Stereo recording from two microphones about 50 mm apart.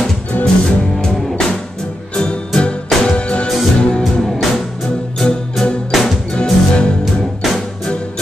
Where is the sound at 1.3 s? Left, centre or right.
Centre.